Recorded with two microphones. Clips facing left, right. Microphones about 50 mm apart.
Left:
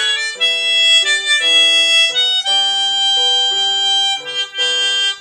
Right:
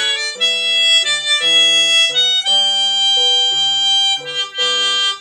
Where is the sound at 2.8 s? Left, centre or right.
Centre.